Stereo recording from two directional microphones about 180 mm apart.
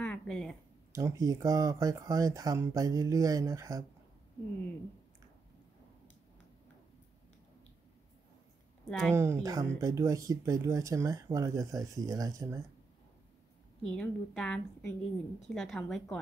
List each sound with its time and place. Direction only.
0.0 s a sound: 5° left (ahead or behind)
0.9 s speech: 20° right (ahead or behind)
8.8 s speech: 5° left (ahead or behind)
9.1 s speech: 15° right (ahead or behind)
13.9 s a woman's voice: 5° left (ahead or behind)